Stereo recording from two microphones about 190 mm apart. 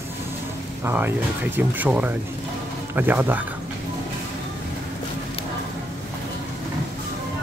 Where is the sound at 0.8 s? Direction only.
10° right (ahead or behind).